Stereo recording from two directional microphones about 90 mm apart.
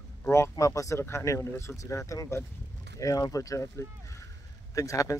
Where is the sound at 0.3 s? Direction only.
35° left (ahead or behind).